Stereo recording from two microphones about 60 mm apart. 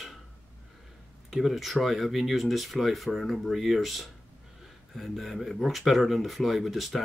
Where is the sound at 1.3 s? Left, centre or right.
Centre.